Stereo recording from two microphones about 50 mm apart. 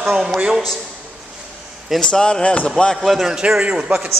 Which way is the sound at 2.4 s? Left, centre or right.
Left.